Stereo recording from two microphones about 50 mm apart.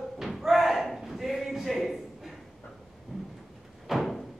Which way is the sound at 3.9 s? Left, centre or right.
Centre.